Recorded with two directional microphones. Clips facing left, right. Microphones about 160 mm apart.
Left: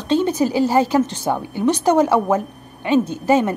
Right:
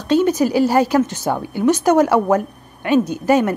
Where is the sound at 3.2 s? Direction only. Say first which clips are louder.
Right 1 dB; 20° left (ahead or behind).